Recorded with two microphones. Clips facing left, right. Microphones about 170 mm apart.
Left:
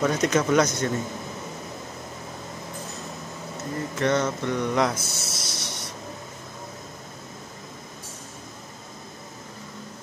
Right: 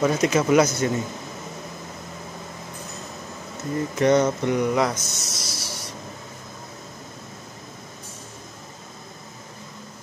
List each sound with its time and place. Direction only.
0.0 s speech: 5° right (ahead or behind)
4.0 s speech: 15° right (ahead or behind)
4.9 s speech: 30° left (ahead or behind)
5.4 s a sound: centre (ahead or behind)